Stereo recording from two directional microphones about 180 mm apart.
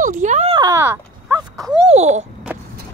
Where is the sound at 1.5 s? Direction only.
Centre (ahead or behind).